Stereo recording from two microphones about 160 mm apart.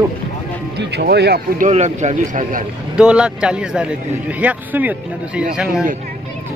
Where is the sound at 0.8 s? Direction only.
90° right; by 1.7 s 65° right (ahead or behind).